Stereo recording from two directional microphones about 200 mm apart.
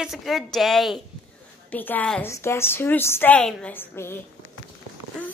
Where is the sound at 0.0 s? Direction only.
Centre (ahead or behind).